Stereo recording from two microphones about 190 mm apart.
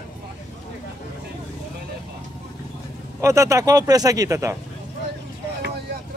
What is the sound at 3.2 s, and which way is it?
Speech, 15° right (ahead or behind).